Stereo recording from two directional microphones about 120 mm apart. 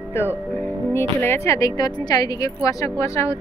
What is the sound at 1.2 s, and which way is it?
Speech, 25° left (ahead or behind).